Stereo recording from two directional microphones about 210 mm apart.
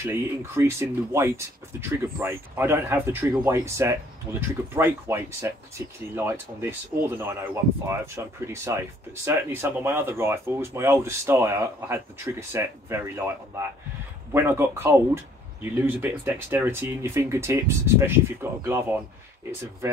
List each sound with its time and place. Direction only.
0.0 s speech: 15° right (ahead or behind)